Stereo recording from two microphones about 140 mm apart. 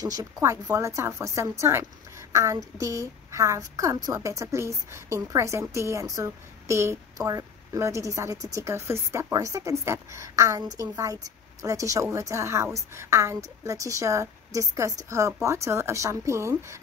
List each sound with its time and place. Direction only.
0.0 s speech: 25° right (ahead or behind)